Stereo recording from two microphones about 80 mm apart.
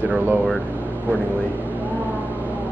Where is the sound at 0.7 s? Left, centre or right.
Right.